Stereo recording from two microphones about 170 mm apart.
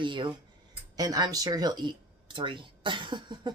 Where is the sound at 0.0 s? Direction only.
30° right (ahead or behind).